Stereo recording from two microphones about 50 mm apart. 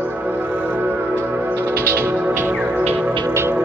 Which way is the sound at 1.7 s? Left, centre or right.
Right.